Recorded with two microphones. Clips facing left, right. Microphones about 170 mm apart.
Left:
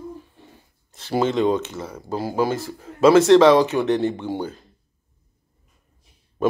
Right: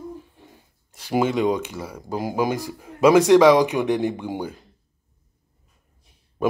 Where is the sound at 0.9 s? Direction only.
10° right (ahead or behind).